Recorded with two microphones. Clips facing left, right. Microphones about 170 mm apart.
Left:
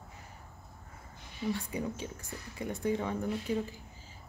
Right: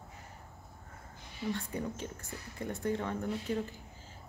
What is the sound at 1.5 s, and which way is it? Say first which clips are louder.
Speech: left 2 dB; 10° left (ahead or behind).